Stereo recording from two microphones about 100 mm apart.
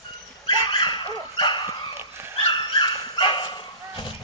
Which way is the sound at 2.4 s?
55° left (ahead or behind).